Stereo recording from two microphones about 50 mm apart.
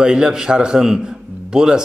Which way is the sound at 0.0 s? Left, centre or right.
Centre.